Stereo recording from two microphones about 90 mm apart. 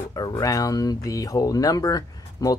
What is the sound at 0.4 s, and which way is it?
Speech, 40° left (ahead or behind).